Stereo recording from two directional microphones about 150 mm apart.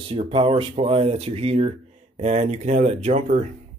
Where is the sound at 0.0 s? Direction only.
35° right (ahead or behind).